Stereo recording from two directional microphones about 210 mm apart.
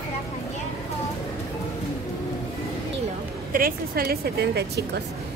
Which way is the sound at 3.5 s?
45° right (ahead or behind).